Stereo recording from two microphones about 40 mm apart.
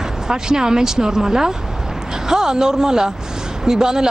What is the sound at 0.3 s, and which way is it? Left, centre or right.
Speech, centre.